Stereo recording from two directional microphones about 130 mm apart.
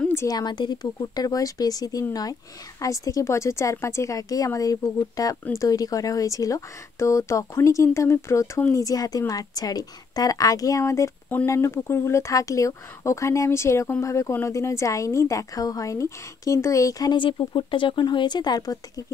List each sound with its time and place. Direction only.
0.1 s speech: 25° left (ahead or behind)